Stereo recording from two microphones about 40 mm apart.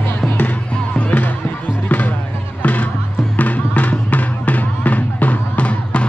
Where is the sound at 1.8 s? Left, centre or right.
Left.